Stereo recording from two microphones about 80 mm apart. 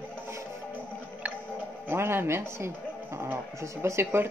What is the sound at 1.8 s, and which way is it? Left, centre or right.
Speech, right.